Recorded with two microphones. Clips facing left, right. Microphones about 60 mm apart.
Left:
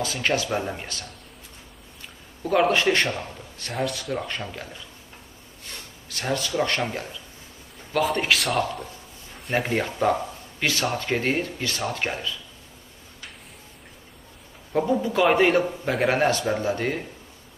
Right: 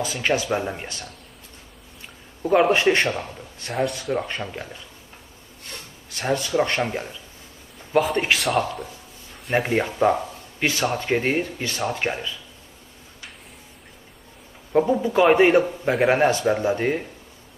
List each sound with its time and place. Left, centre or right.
0.0 s speech: centre
2.4 s speech: centre
2.7 s speech: right
3.1 s speech: centre
6.1 s speech: centre
10.6 s a man's voice: centre
14.7 s speech: centre
16.3 s speech: centre